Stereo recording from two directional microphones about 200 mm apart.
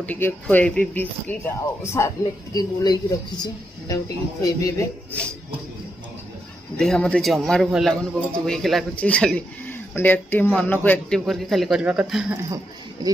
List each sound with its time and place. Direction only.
0.0 s speech: 10° left (ahead or behind)
6.8 s a man's voice: 5° left (ahead or behind)
13.0 s speech: 20° right (ahead or behind)